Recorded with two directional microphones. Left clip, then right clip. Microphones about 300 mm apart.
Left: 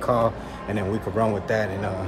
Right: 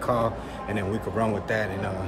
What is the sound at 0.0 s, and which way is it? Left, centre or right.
A man's voice, centre.